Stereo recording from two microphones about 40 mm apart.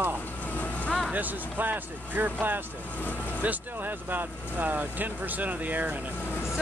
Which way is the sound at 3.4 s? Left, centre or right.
Right.